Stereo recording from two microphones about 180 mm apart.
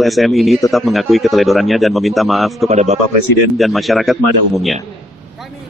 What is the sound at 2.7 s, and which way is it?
Speech, 40° right (ahead or behind).